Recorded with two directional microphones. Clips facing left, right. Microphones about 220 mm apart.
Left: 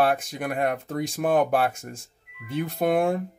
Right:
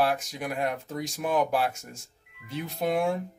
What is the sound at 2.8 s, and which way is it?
Speech, 55° left (ahead or behind).